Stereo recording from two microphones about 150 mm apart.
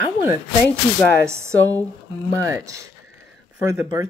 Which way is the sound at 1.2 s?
20° right (ahead or behind).